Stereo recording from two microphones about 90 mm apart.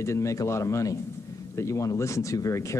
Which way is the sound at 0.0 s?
35° left (ahead or behind).